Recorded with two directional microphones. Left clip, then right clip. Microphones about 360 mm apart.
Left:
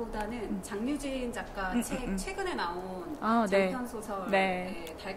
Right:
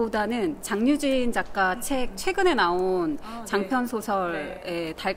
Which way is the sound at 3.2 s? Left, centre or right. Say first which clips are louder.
Left 2 dB; left.